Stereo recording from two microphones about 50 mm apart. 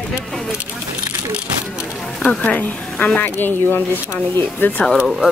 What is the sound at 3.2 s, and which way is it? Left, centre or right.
Speech, left.